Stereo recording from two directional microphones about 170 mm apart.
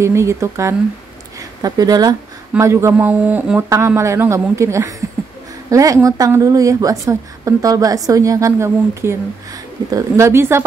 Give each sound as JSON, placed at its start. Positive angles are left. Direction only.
{"t": 0.0, "sound": "speech", "side_deg": -15}